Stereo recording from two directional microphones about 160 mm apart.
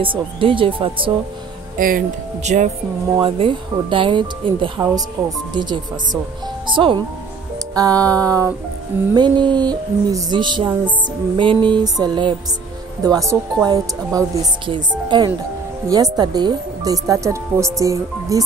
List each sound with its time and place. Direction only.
0.0 s speech: 35° right (ahead or behind)
1.8 s speech: 60° right (ahead or behind)
3.2 s speech: 30° right (ahead or behind)
5.2 s speech: 5° right (ahead or behind)
5.5 s speech: 30° right (ahead or behind)